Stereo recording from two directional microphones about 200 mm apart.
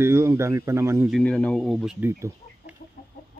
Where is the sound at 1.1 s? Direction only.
5° left (ahead or behind).